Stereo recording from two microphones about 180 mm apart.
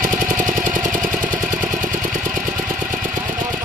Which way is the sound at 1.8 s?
45° right (ahead or behind).